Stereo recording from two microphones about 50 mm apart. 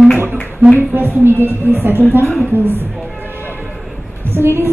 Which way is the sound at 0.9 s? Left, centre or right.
Right.